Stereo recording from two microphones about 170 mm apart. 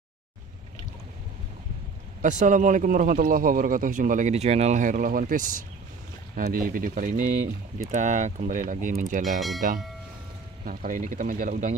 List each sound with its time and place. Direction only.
2.2 s a man's voice: 45° right (ahead or behind)